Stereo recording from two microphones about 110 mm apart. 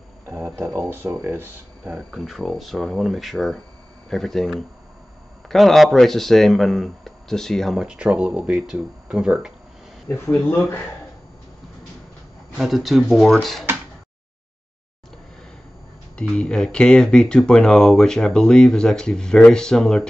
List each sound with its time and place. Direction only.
0.3 s a sound: 20° right (ahead or behind)
0.7 s speech: 20° right (ahead or behind)
1.9 s speech: centre (ahead or behind)
10.0 s speech: 20° left (ahead or behind)
10.3 s speech: 10° left (ahead or behind)
12.5 s speech: centre (ahead or behind)
16.2 s speech: 10° left (ahead or behind)